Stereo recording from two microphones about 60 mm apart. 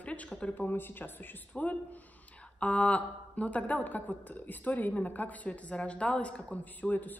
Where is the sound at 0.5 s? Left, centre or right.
Left.